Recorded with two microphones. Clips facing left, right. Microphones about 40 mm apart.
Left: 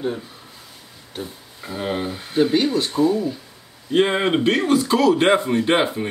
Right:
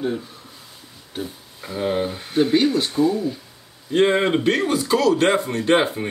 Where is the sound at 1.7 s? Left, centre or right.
Centre.